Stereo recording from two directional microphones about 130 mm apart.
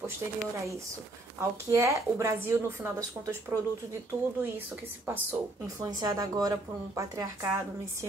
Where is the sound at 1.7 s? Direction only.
25° right (ahead or behind).